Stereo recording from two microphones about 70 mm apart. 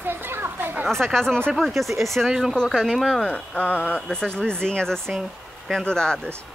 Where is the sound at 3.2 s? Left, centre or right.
Centre.